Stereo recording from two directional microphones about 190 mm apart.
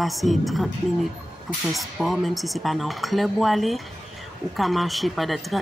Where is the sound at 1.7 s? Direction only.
Centre (ahead or behind).